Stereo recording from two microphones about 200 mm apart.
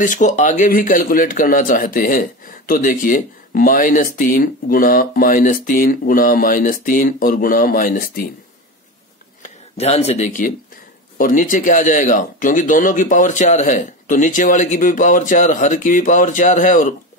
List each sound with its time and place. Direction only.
0.0 s a man's voice: 40° left (ahead or behind)
9.4 s speech: 30° left (ahead or behind)